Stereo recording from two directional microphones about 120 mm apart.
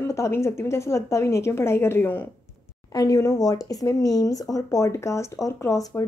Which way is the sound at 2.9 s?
30° left (ahead or behind).